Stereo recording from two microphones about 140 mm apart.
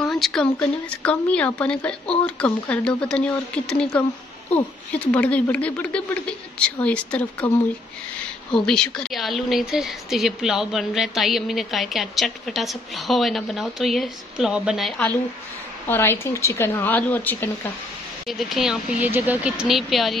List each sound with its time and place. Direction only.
0.0 s speech: 5° left (ahead or behind)
8.5 s speech: 5° left (ahead or behind)
15.9 s speech: 15° left (ahead or behind)
18.2 s speech: centre (ahead or behind)